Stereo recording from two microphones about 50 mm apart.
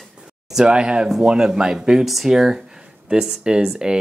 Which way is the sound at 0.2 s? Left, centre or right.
Centre.